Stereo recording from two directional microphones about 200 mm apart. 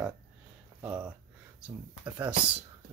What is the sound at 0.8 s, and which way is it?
Speech, 10° right (ahead or behind).